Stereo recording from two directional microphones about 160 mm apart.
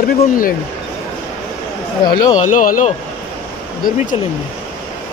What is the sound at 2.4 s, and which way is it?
Speech, 55° left (ahead or behind).